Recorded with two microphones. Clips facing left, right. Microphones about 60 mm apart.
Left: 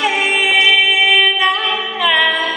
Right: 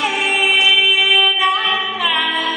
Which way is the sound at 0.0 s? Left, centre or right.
Left.